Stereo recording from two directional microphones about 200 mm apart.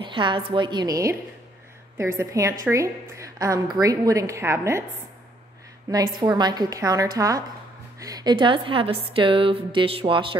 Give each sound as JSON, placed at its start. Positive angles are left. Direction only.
{"t": 0.0, "sound": "a woman's voice", "side_deg": -25}
{"t": 5.9, "sound": "a woman's voice", "side_deg": -20}